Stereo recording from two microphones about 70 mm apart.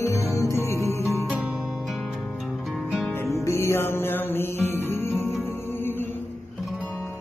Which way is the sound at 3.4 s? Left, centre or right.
Left.